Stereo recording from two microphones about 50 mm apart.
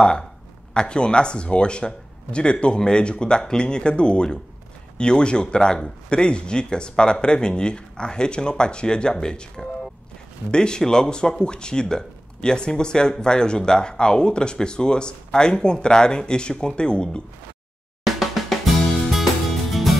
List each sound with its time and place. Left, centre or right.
0.0 s speech: centre
10.5 s speech: centre
18.0 s drum: centre
19.7 s music: centre